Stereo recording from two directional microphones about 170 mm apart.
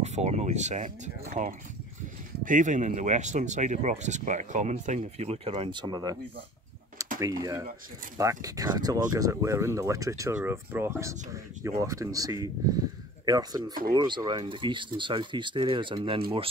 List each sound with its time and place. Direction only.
0.0 s speech: 40° right (ahead or behind); by 6.1 s 25° right (ahead or behind)
7.2 s speech: 20° right (ahead or behind)